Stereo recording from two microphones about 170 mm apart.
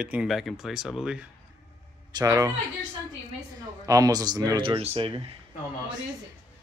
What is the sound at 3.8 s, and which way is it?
A man's voice, 20° right (ahead or behind).